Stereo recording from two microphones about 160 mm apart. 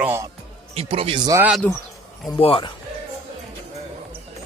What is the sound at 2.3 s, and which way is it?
Speech, 35° left (ahead or behind).